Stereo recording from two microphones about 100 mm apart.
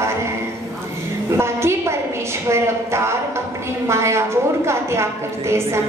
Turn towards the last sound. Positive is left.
turn(degrees=-25)  # may be behind; listen again after turning